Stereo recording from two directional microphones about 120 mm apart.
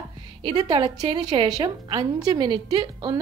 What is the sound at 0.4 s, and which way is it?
A woman's voice, 40° right (ahead or behind).